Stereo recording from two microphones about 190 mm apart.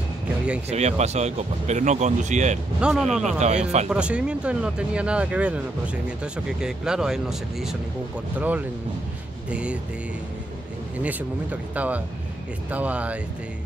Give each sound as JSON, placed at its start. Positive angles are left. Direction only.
{"t": 0.7, "sound": "speech", "side_deg": -35}
{"t": 2.8, "sound": "speech", "side_deg": -5}
{"t": 3.3, "sound": "speech", "side_deg": -35}
{"t": 3.9, "sound": "speech", "side_deg": -5}
{"t": 11.0, "sound": "speech", "side_deg": -10}